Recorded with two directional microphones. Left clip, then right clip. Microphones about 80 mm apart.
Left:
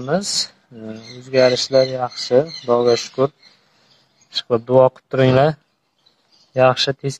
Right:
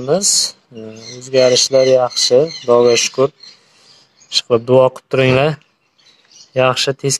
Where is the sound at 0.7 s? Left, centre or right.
Left.